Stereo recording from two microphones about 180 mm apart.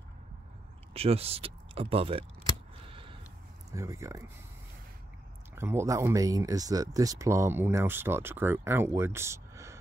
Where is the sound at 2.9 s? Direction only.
30° right (ahead or behind).